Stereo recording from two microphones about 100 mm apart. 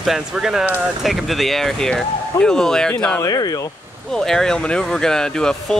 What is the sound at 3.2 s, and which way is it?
Speech, 40° left (ahead or behind).